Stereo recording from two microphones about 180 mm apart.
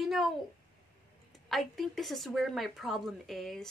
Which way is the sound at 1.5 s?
Centre (ahead or behind).